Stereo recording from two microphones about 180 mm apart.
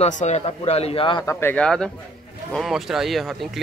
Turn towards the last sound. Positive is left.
turn(degrees=0)  # may be behind; listen again after turning